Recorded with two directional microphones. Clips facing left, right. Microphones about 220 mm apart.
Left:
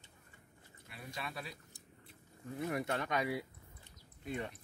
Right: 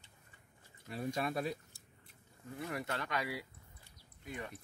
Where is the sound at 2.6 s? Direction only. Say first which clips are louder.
Left 4 dB; 20° left (ahead or behind).